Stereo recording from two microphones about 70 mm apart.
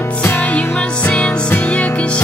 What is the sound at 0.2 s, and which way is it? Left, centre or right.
Music, left.